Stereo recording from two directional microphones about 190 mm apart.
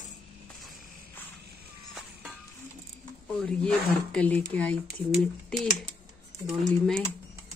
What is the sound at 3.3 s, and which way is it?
Speech, 5° left (ahead or behind).